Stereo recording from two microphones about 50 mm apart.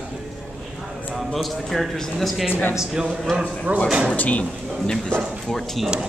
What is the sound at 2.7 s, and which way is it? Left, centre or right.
Speech, centre.